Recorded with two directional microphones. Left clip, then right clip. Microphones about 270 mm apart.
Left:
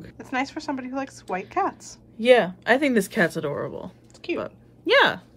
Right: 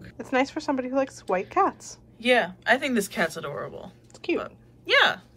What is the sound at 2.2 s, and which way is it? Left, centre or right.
A woman's voice, left.